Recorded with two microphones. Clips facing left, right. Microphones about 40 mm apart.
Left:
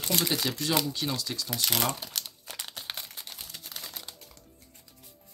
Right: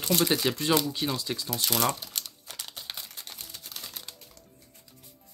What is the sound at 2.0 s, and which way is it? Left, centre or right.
Crumpling, centre.